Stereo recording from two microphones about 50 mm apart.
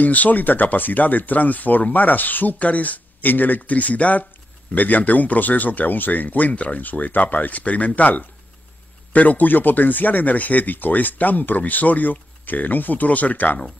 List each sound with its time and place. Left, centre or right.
0.0 s speech: left